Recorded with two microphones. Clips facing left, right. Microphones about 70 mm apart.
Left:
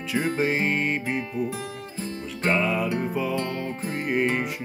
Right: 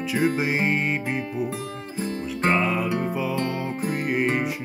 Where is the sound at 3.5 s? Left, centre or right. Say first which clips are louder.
Right 3 dB; centre.